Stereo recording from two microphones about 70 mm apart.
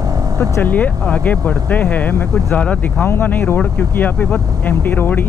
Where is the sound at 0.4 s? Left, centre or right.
Left.